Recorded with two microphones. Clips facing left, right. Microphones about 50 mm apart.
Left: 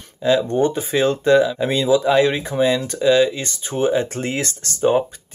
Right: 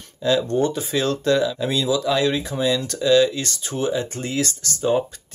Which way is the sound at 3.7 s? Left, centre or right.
Left.